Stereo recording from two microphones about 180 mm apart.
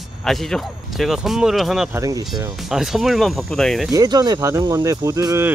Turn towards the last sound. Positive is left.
turn(degrees=-15)  # may be behind; listen again after turning